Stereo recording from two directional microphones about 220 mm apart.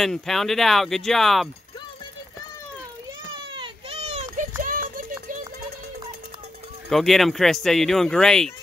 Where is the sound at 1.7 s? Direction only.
20° left (ahead or behind).